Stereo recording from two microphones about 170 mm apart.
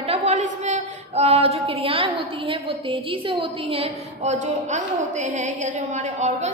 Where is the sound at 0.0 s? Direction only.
35° right (ahead or behind).